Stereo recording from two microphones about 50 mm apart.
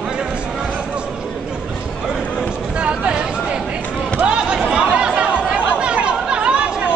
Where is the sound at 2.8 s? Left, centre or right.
Right.